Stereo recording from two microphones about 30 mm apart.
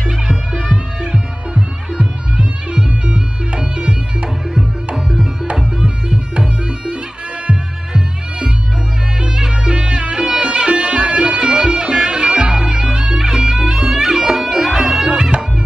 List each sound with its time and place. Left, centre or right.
1.1 s music: right
4.9 s music: centre; by 11.2 s right
11.2 s music: right